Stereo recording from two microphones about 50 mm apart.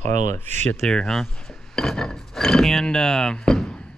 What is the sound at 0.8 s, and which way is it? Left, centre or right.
Speech, centre.